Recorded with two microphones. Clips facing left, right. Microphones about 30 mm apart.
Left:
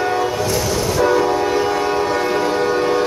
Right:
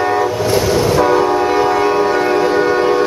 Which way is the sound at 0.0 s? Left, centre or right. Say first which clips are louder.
Right 4 dB; centre.